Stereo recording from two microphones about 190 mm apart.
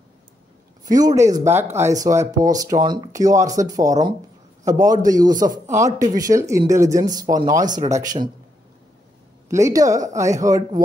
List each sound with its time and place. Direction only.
0.8 s speech: 20° right (ahead or behind)
9.5 s speech: 15° right (ahead or behind)